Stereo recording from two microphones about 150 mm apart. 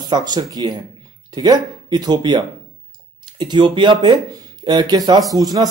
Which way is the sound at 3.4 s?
30° right (ahead or behind).